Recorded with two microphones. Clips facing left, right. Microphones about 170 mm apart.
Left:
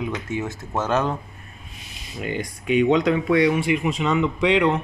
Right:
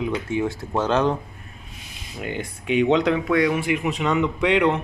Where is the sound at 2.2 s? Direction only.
65° right (ahead or behind).